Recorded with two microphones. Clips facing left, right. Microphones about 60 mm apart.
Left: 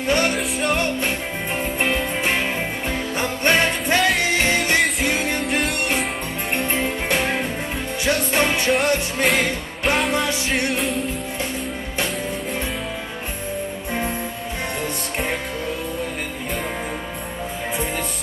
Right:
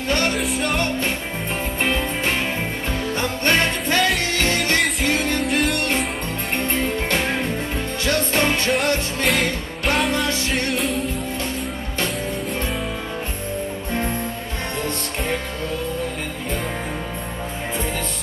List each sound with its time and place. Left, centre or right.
0.1 s music: centre
0.4 s music: centre
8.6 s music: centre